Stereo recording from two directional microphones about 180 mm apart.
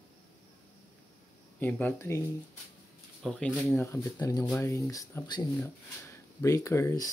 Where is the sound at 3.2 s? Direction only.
5° left (ahead or behind).